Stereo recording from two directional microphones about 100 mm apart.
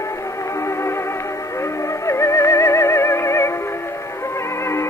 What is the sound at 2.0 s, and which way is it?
Music, 30° left (ahead or behind).